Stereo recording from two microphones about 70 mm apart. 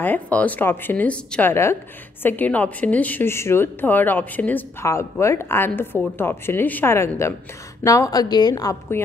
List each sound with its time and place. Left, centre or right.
0.0 s a woman's voice: left
1.4 s a woman's voice: left
2.2 s a woman's voice: left
3.3 s a woman's voice: left
5.2 s a woman's voice: left
7.8 s a woman's voice: left
9.0 s a woman's voice: left